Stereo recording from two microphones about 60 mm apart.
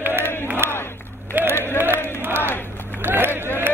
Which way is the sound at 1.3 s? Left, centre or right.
Right.